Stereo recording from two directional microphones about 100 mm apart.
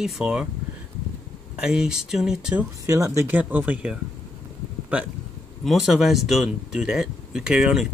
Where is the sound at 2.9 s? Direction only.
30° right (ahead or behind).